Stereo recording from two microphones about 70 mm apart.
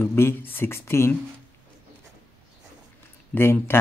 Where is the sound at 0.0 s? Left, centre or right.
Left.